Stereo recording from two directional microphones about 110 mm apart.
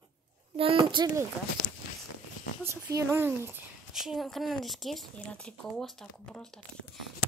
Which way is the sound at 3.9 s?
Centre (ahead or behind).